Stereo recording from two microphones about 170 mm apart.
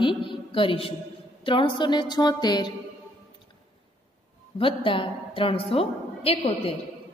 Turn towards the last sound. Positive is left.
turn(degrees=35)  # may be behind; listen again after turning